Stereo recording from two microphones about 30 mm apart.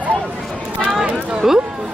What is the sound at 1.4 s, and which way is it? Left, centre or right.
Speech, centre.